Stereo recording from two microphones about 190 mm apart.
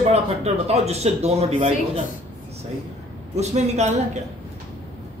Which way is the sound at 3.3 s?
35° right (ahead or behind).